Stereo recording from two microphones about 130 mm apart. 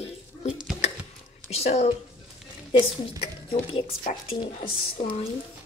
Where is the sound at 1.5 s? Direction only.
55° left (ahead or behind).